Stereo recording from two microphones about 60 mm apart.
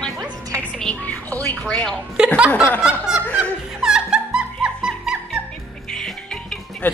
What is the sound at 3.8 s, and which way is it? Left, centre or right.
Music, centre.